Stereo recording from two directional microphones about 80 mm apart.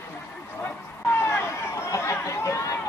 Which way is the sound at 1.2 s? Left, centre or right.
Left.